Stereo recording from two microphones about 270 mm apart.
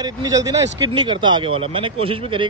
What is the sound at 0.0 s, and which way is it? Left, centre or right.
Speech, centre.